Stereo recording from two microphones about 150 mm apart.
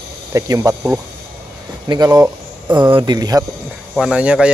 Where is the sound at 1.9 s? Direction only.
25° right (ahead or behind).